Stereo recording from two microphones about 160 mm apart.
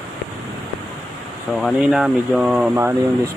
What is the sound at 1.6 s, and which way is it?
Speech, 5° right (ahead or behind).